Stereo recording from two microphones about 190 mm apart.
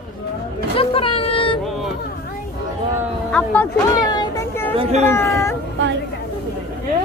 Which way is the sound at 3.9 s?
20° left (ahead or behind).